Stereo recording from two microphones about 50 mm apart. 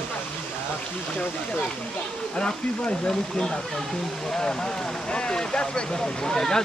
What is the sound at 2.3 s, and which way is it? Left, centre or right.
Speech, left.